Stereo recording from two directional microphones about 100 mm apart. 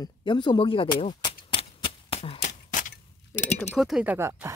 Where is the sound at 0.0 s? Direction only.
50° left (ahead or behind).